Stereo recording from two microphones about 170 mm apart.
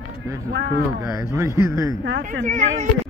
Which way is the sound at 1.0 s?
20° right (ahead or behind).